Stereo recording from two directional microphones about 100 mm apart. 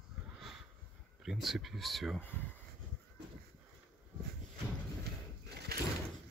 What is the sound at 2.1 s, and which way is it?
Speech, 20° left (ahead or behind).